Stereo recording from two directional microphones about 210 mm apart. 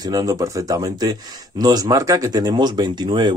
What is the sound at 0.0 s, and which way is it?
Speech, 15° right (ahead or behind).